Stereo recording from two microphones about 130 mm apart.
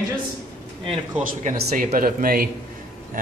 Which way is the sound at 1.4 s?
90° right.